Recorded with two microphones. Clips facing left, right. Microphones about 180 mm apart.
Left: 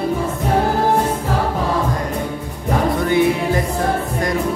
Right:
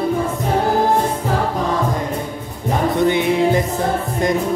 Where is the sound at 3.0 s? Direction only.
20° right (ahead or behind).